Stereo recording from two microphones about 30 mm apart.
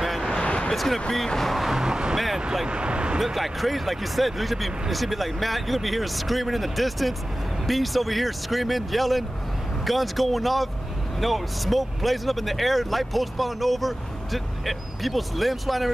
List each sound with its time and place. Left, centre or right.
0.7 s speech: centre
1.5 s vehicle: centre
1.8 s speech: right
3.2 s speech: centre